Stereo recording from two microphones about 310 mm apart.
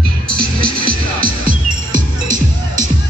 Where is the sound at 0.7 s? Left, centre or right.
Right.